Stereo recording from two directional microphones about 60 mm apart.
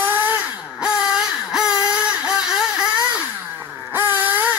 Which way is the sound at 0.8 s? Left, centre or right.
Centre.